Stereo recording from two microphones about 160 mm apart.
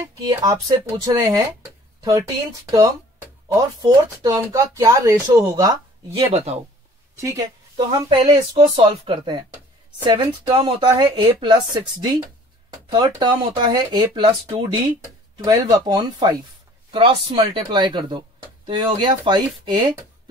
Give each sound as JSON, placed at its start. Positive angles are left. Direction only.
{"t": 0.2, "sound": "speech", "side_deg": -25}
{"t": 6.1, "sound": "speech", "side_deg": -40}
{"t": 7.2, "sound": "speech", "side_deg": -20}
{"t": 7.7, "sound": "speech", "side_deg": -35}
{"t": 10.4, "sound": "speech", "side_deg": -30}